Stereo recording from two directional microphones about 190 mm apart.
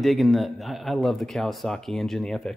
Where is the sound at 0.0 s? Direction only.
Centre (ahead or behind).